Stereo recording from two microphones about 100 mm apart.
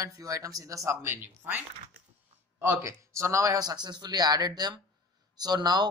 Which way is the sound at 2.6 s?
30° right (ahead or behind).